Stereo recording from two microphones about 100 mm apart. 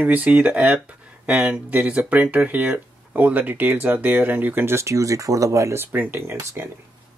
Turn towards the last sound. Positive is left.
turn(degrees=-25)  # may be behind; listen again after turning